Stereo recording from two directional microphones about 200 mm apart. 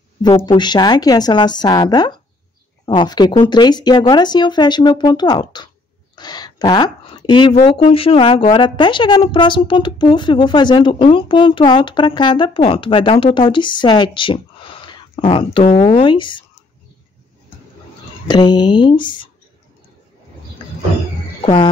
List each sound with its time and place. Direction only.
0.2 s a woman's voice: 20° left (ahead or behind)
6.1 s a sound: 20° left (ahead or behind)
7.6 s a woman's voice: 25° left (ahead or behind)
18.2 s a woman's voice: 20° left (ahead or behind)
21.4 s speech: 25° left (ahead or behind)